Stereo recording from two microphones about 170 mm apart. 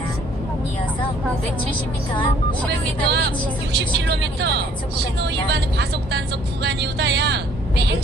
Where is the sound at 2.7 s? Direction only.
80° right.